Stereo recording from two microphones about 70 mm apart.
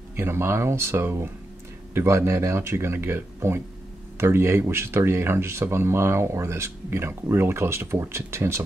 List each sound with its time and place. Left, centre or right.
0.1 s speech: right